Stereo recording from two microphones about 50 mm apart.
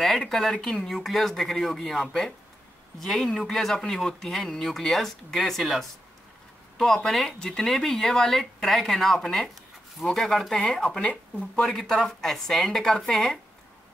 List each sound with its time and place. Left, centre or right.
0.3 s speech: centre
11.1 s speech: left
11.6 s speech: centre